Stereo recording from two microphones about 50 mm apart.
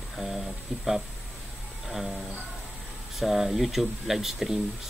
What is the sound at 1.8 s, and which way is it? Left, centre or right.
Music, centre.